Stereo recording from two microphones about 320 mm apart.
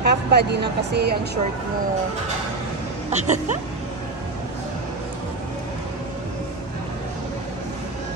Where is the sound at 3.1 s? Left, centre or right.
Right.